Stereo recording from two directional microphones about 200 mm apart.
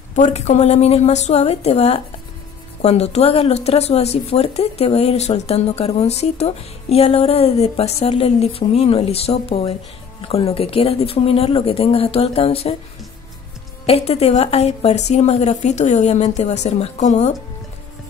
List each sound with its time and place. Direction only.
0.1 s speech: 35° left (ahead or behind)
13.8 s speech: 30° left (ahead or behind)